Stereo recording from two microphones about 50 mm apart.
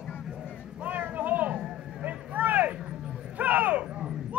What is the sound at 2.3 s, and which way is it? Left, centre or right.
Vehicle, right.